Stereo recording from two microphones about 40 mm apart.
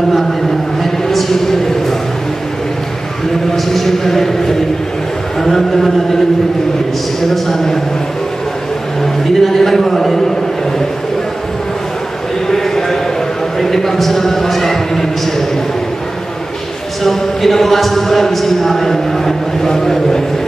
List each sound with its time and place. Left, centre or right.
1.0 s a sound: centre
3.5 s a man's voice: centre
7.4 s speech: centre
9.3 s a man's voice: centre
12.4 s a sound: centre
17.0 s speech: centre